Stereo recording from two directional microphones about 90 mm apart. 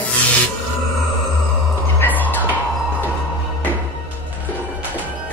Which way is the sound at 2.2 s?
20° left (ahead or behind).